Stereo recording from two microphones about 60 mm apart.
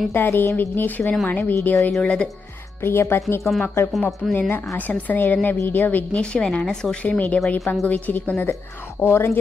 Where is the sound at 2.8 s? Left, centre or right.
Left.